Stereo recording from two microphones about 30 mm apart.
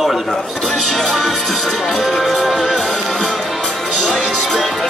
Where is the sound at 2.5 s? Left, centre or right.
Centre.